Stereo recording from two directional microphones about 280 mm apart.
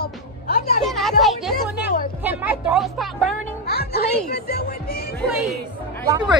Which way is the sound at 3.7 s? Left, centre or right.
Left.